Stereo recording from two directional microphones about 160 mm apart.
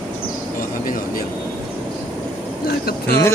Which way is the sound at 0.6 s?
65° left (ahead or behind).